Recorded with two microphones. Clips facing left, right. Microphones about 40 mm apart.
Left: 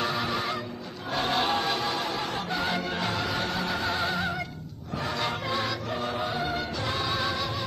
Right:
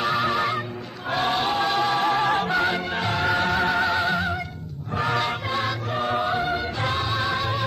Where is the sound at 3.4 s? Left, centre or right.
Right.